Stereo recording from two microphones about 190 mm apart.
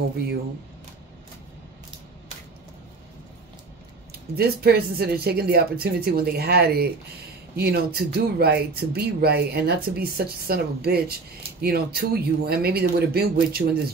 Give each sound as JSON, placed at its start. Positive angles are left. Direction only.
{"t": 4.1, "sound": "speech", "side_deg": -55}